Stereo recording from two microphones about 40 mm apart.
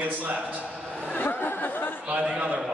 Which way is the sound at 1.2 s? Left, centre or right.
Left.